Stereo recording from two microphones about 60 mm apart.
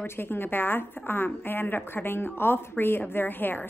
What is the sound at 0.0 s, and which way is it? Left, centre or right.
A woman's voice, left.